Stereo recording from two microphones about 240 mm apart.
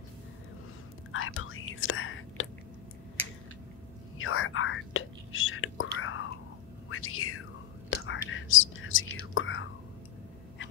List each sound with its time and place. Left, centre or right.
1.1 s whispering: left
4.2 s whispering: left
7.9 s whispering: left